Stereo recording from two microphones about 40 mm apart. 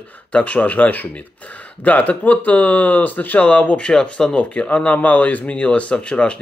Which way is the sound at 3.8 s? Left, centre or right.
Left.